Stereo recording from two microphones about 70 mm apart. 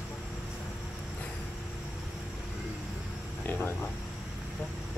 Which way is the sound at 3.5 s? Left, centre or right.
Left.